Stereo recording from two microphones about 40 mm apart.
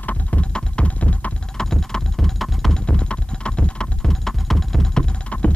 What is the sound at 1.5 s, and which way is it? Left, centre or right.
Throbbing, centre.